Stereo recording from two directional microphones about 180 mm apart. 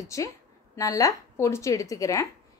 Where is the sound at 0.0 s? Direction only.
20° left (ahead or behind).